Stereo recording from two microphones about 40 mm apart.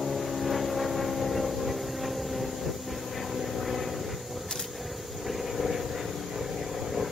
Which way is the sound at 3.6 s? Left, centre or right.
Centre.